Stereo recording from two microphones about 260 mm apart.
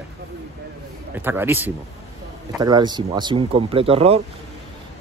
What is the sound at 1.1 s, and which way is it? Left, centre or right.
Speech, centre.